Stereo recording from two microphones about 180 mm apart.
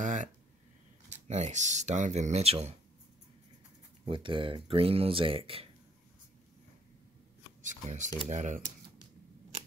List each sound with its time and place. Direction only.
0.0 s a sound: 45° right (ahead or behind)
1.2 s speech: 40° right (ahead or behind)
4.0 s speech: 30° right (ahead or behind)
7.6 s speech: 45° right (ahead or behind)